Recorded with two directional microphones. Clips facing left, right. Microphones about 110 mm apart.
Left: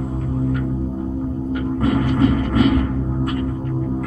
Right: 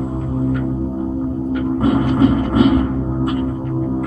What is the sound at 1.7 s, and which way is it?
Music, 25° right (ahead or behind).